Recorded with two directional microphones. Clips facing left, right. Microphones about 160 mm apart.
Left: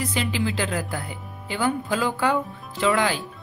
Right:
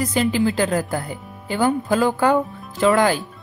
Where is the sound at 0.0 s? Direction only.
45° right (ahead or behind).